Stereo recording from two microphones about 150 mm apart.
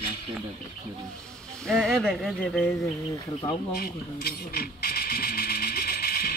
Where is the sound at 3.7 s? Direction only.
90° left.